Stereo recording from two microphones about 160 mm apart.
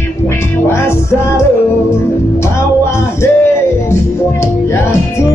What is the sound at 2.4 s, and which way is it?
Music, 15° left (ahead or behind).